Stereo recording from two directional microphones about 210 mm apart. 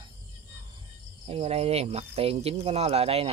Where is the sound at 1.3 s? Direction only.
30° right (ahead or behind).